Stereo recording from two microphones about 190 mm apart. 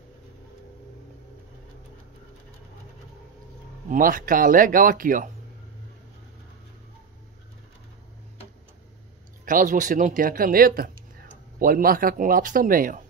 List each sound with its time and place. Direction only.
3.9 s speech: 45° right (ahead or behind)
9.4 s speech: 45° right (ahead or behind)